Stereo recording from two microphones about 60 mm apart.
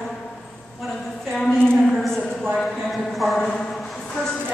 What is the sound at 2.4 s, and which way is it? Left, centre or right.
Clip-clop, centre.